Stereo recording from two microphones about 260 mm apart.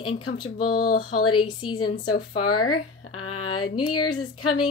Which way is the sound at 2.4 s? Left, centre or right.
Left.